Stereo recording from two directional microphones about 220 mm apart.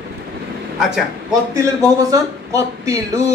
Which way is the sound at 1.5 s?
15° right (ahead or behind).